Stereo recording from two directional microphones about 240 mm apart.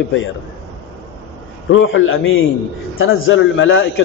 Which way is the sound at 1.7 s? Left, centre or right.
Left.